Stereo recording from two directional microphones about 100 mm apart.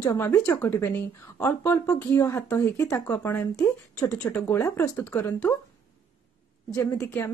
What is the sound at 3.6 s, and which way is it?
Speech, 35° left (ahead or behind).